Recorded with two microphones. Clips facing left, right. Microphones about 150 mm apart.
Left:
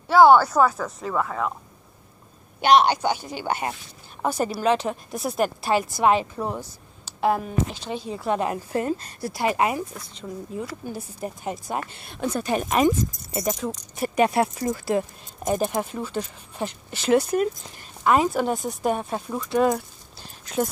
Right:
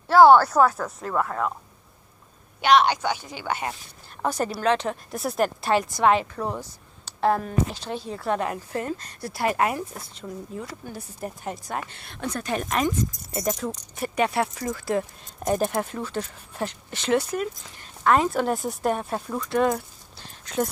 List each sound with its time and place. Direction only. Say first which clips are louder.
0.1 s speech: even; centre (ahead or behind)
3.3 s speech: left 2 dB; 35° left (ahead or behind)
4.2 s speech: left 1 dB; 5° left (ahead or behind)
8.4 s a woman's voice: left 3 dB; 20° left (ahead or behind)
9.2 s speech: even; centre (ahead or behind); by 14.8 s 25° left (ahead or behind)
14.9 s speech: left 2 dB; 10° left (ahead or behind)